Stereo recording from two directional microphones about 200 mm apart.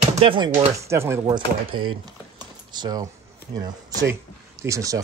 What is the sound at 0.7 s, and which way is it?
Speech, 15° right (ahead or behind).